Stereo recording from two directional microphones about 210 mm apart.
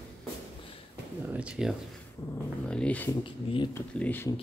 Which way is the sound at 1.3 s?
5° right (ahead or behind).